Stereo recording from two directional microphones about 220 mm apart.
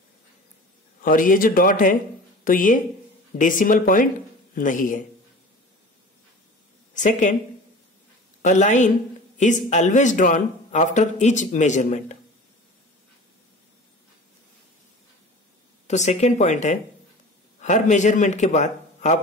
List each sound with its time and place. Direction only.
1.0 s speech: 40° left (ahead or behind)
6.9 s a woman's voice: 35° left (ahead or behind)
8.4 s speech: 35° left (ahead or behind)
15.9 s a man's voice: 30° left (ahead or behind)